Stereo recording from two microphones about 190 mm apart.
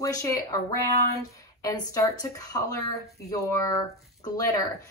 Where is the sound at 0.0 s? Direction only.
15° left (ahead or behind).